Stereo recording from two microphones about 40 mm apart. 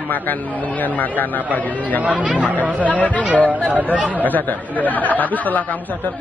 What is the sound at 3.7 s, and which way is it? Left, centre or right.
Speech, right.